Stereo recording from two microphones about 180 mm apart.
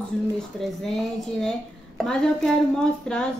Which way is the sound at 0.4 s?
Centre (ahead or behind).